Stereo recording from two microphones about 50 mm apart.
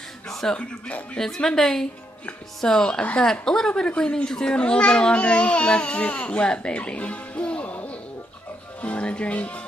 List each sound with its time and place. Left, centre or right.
0.3 s a sound: centre
0.6 s a child's voice: left
3.0 s a child's voice: left
3.3 s a child's voice: centre